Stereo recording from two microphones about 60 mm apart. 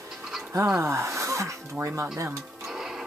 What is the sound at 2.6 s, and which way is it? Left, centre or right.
Music, centre.